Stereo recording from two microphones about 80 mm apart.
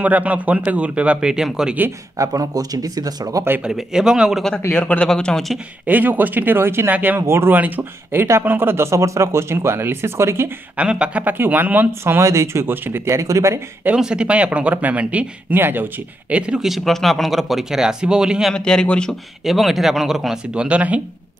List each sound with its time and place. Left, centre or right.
0.0 s speech: centre
2.1 s speech: right
3.6 s speech: centre
4.7 s a man's voice: centre
5.9 s speech: right
10.8 s speech: centre; by 13.6 s right
13.9 s speech: centre
18.5 s a man's voice: centre